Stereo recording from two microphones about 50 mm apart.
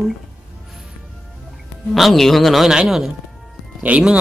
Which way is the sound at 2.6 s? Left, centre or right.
Centre.